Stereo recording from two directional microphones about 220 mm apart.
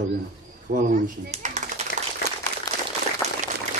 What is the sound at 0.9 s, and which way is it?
Speech, 35° right (ahead or behind).